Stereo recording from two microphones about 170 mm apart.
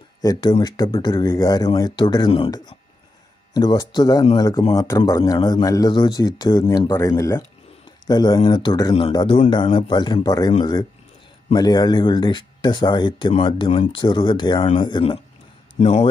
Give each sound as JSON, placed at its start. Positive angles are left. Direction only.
{"t": 0.2, "sound": "speech", "side_deg": 20}
{"t": 15.7, "sound": "speech", "side_deg": 40}